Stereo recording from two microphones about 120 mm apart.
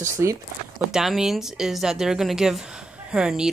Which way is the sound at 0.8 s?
5° right (ahead or behind).